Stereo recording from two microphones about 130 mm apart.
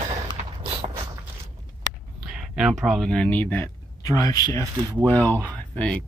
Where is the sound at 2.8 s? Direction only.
Centre (ahead or behind); by 4.7 s 25° left (ahead or behind).